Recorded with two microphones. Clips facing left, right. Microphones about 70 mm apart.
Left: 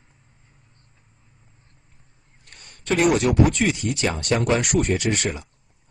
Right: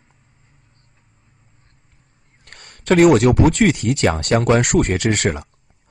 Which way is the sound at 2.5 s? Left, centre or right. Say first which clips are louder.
Right 7 dB; right.